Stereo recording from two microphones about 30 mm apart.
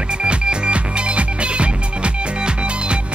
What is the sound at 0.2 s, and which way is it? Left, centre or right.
Music, right.